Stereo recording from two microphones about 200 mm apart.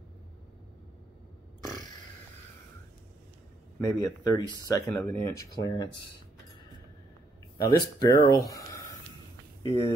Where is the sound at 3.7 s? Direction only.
20° left (ahead or behind).